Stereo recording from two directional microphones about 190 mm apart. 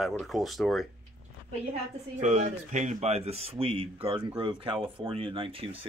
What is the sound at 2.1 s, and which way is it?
Speech, 40° right (ahead or behind).